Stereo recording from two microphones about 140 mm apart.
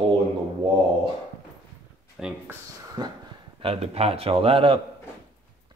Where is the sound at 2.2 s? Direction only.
5° right (ahead or behind).